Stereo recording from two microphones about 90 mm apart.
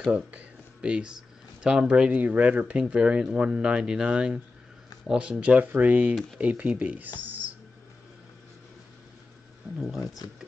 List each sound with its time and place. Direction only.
0.1 s speech: 15° right (ahead or behind)